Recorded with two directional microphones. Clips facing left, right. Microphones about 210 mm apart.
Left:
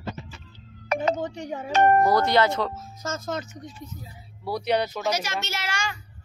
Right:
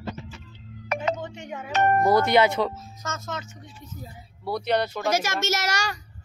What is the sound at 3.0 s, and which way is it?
Speech, 35° left (ahead or behind).